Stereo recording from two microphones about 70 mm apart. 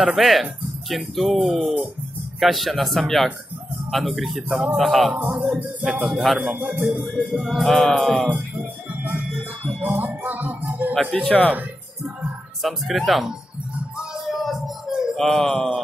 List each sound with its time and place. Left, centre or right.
0.0 s a man's voice: centre
5.1 s music: right
6.1 s speech: centre
6.4 s music: right
7.2 s speech: centre
7.7 s speech: centre
9.7 s music: right
11.1 s speech: centre
11.4 s speech: right
12.6 s speech: centre
13.9 s music: centre
15.1 s speech: centre